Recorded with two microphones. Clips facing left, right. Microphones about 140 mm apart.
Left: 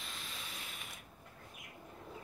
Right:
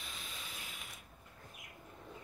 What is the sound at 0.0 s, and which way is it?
Mechanisms, centre (ahead or behind).